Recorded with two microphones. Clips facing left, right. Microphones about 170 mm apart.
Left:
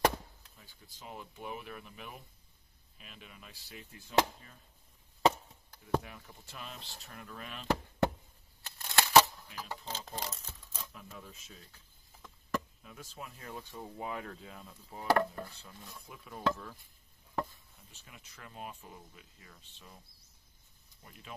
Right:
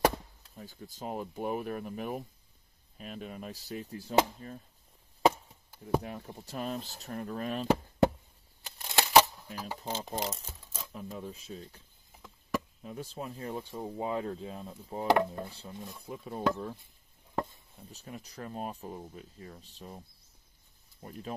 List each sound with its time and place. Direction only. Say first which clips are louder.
0.6 s speech: right 13 dB; 45° right (ahead or behind)
5.2 s chop: right 2 dB; 10° right (ahead or behind)
6.0 s speech: right 10 dB; 35° right (ahead or behind)
8.6 s a sound: right 1 dB; 15° right (ahead or behind)
9.8 s speech: right 7 dB; 15° right (ahead or behind)
10.4 s crumpling: right 2 dB; 10° right (ahead or behind)
10.9 s speech: right 9 dB; 30° right (ahead or behind)
12.2 s a sound: right 2 dB; 10° right (ahead or behind)
12.8 s speech: right 8 dB; 30° right (ahead or behind)
15.0 s speech: right 3 dB; 20° right (ahead or behind); by 16.4 s 35° right (ahead or behind)
17.9 s speech: right 13 dB; 40° right (ahead or behind)
21.0 s speech: right 12 dB; 40° right (ahead or behind)